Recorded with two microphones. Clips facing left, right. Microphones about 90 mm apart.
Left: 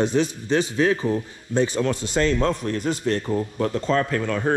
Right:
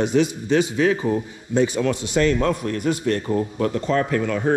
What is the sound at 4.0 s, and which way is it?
Speech, 20° right (ahead or behind).